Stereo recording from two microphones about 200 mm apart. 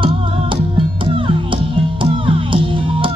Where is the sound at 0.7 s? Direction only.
25° right (ahead or behind).